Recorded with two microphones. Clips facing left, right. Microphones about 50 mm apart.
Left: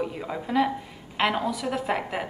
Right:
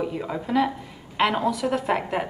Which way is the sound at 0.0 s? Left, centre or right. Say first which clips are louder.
Right 2 dB; centre.